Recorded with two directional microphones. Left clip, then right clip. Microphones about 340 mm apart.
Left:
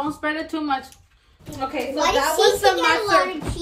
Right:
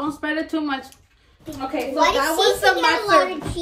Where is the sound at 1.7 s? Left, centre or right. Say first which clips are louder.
Right 2 dB; centre.